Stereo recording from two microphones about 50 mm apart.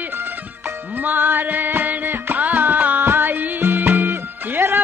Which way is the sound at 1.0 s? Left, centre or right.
Right.